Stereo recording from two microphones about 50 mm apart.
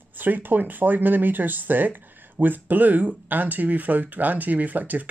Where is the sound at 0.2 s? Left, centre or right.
Right.